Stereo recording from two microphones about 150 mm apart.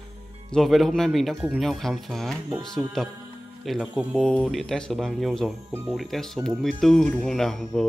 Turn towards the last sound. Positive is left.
turn(degrees=5)  # may be behind; listen again after turning